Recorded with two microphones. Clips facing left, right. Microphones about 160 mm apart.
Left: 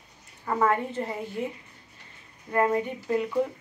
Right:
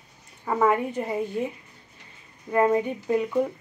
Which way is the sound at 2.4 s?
15° right (ahead or behind).